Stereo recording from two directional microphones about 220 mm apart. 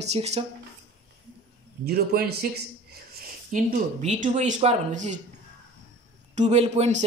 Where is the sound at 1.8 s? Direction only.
45° right (ahead or behind).